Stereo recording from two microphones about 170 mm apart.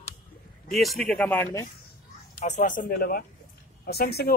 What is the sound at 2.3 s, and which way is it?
Speech, 50° left (ahead or behind).